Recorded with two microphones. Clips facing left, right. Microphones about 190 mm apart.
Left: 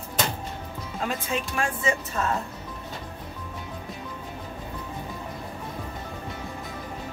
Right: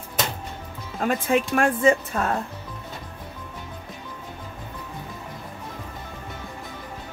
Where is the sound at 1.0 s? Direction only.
50° right (ahead or behind).